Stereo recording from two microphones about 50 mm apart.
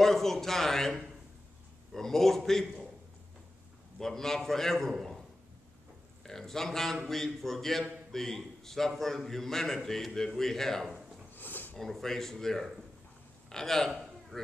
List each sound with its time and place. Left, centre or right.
0.0 s a man's voice: centre
2.0 s a man's voice: centre
4.0 s a man's voice: centre
6.2 s a man's voice: centre
11.3 s a sound: left
11.7 s a man's voice: centre
13.5 s a sound: centre